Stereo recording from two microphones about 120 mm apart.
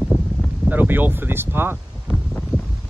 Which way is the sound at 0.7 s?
15° right (ahead or behind).